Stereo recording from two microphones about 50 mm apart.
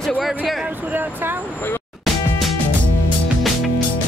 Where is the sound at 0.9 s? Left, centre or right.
Right.